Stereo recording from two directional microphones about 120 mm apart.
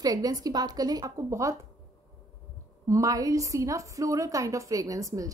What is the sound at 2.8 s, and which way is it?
A woman's voice, 25° right (ahead or behind).